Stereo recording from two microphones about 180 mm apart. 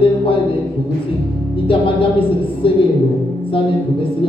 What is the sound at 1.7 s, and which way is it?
A woman's voice, 30° left (ahead or behind).